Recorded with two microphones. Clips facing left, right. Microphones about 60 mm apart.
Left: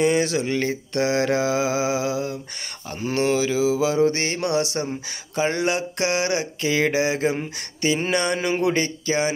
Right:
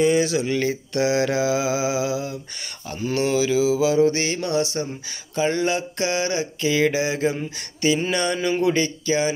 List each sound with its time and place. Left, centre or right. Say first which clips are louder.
0.0 s speech: right 1 dB; left
0.5 s mantra: right 1 dB; left
3.0 s speech: even; left
4.5 s speech: left 1 dB; left
5.3 s speech: right 1 dB; left
6.6 s mantra: right 1 dB; left
7.2 s speech: even; left